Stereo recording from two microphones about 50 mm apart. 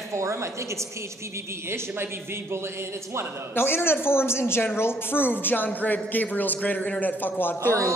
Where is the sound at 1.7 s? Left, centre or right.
Right.